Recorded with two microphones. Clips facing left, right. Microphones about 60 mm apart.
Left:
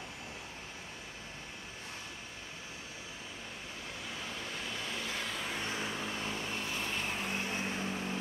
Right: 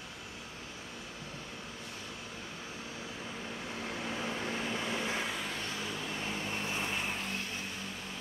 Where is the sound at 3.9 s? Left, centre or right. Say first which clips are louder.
Right 6 dB; right.